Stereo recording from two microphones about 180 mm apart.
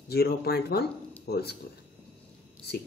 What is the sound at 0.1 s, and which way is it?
Speech, 60° left (ahead or behind).